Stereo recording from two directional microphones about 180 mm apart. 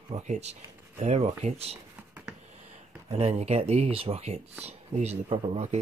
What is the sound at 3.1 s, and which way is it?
Speech, 35° right (ahead or behind).